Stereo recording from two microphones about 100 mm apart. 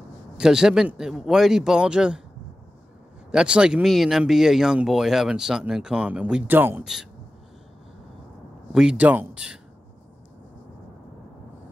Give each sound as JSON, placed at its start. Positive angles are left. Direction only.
{"t": 0.4, "sound": "speech", "side_deg": -5}
{"t": 3.3, "sound": "speech", "side_deg": -10}
{"t": 6.5, "sound": "a man's voice", "side_deg": -20}
{"t": 6.8, "sound": "speech", "side_deg": -5}
{"t": 8.7, "sound": "speech", "side_deg": -10}